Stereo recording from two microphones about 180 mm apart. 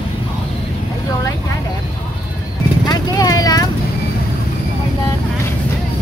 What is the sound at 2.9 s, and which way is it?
Vehicle, 20° left (ahead or behind).